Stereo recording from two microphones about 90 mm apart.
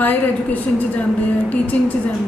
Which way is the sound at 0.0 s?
20° left (ahead or behind).